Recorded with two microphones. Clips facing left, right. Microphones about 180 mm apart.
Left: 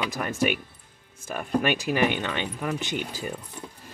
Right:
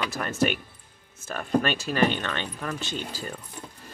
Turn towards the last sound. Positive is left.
turn(degrees=15)  # may be behind; listen again after turning